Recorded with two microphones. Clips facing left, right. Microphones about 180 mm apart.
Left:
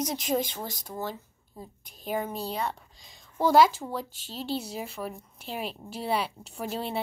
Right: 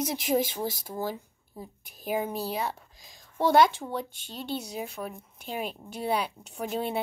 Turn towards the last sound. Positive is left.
turn(degrees=0)  # may be behind; listen again after turning